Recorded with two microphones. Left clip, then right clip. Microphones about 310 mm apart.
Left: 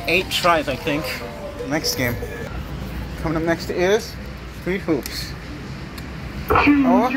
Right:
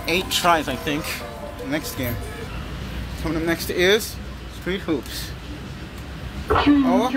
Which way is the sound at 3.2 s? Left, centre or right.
Centre.